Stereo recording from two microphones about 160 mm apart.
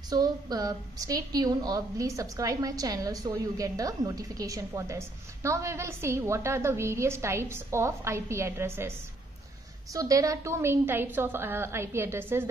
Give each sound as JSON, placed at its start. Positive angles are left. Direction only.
{"t": 0.1, "sound": "a woman's voice", "side_deg": -25}
{"t": 9.9, "sound": "a woman's voice", "side_deg": -20}